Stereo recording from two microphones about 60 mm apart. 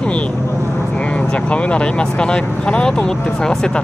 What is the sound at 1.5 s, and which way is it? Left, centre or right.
Speech, centre.